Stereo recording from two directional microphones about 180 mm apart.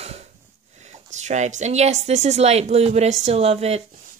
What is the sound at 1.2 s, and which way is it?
A woman's voice, 40° right (ahead or behind).